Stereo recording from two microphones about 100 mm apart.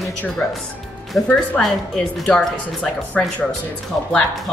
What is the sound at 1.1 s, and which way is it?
Speech, 5° left (ahead or behind).